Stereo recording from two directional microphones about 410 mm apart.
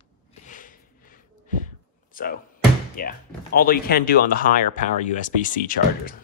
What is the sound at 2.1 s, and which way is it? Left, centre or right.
Speech, left.